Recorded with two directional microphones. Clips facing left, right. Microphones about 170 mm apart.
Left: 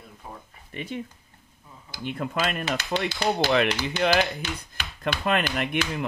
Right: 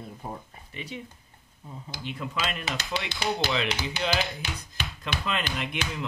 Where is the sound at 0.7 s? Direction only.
50° left (ahead or behind).